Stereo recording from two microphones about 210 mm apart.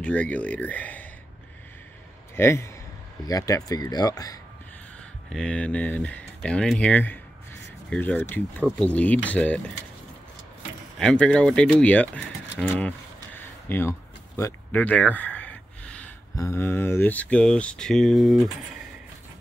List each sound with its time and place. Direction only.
0.0 s speech: 5° left (ahead or behind)
2.3 s speech: 10° left (ahead or behind)
5.3 s speech: 5° left (ahead or behind)
11.0 s speech: 5° left (ahead or behind)